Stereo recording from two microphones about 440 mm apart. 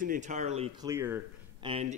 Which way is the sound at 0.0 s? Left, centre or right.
Centre.